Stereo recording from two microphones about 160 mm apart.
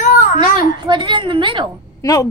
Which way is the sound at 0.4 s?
30° right (ahead or behind).